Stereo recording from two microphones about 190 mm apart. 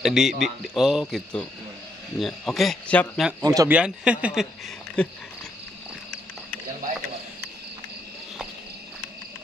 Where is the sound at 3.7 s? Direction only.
5° right (ahead or behind).